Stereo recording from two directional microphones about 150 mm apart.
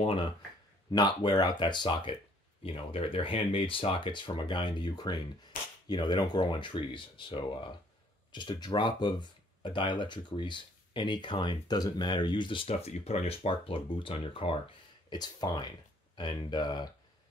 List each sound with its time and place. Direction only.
0.9 s speech: 30° left (ahead or behind)